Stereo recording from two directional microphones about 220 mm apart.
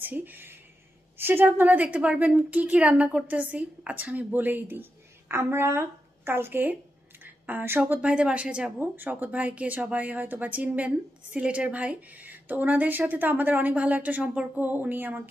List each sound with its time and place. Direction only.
0.0 s a woman's voice: 10° right (ahead or behind)